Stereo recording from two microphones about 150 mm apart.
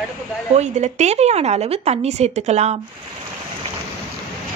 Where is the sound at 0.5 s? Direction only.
50° right (ahead or behind).